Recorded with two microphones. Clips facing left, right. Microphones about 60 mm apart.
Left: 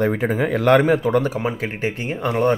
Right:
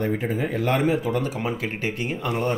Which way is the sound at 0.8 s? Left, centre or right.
Left.